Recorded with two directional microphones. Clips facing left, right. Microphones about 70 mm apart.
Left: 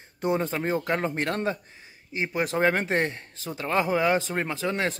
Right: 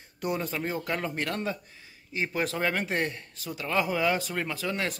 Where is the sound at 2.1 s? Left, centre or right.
Left.